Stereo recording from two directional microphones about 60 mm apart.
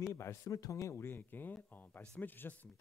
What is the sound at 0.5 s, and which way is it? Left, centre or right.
Speech, left.